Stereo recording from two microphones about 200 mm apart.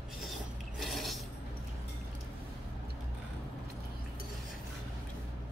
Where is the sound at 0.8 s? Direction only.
Centre (ahead or behind).